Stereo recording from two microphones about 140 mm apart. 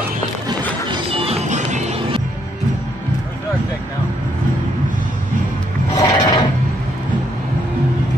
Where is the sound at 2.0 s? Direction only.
40° right (ahead or behind).